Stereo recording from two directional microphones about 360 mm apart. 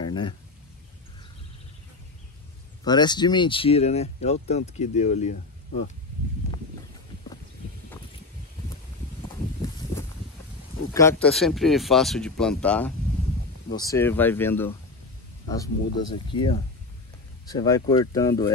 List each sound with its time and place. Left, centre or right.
0.0 s a sound: centre
2.8 s speech: centre
10.9 s speech: centre